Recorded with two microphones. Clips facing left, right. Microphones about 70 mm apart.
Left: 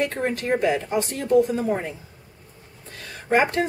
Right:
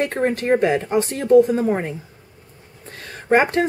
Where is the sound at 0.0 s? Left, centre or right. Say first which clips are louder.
Right 4 dB; right.